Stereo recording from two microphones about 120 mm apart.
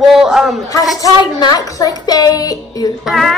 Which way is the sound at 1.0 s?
30° left (ahead or behind).